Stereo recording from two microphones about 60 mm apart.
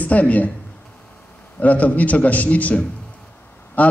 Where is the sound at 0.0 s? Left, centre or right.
Left.